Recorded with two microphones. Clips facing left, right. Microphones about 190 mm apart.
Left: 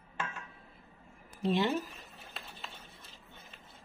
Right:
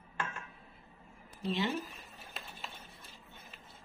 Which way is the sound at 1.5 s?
50° left (ahead or behind).